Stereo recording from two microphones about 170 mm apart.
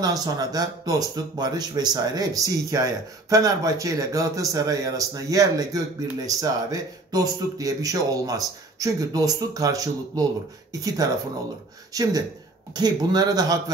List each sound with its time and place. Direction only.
0.0 s speech: 20° right (ahead or behind)